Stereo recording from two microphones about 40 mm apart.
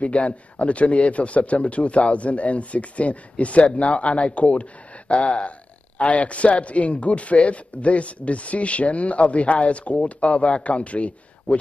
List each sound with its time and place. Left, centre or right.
0.0 s speech: left